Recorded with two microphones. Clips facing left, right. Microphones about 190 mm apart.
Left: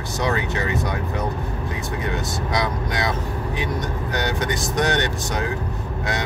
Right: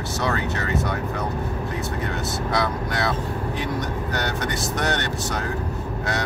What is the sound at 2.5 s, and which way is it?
Speech, 15° left (ahead or behind).